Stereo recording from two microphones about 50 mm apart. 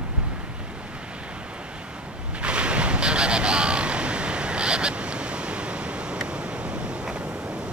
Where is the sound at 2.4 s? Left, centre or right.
Right.